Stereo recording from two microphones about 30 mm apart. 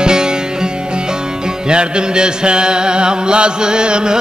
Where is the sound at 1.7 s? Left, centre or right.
Right.